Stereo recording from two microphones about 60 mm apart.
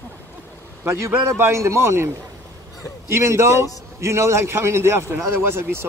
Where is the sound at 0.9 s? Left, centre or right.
Right.